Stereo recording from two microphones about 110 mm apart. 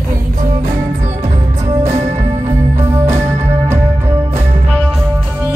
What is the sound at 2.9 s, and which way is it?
Music, 25° right (ahead or behind).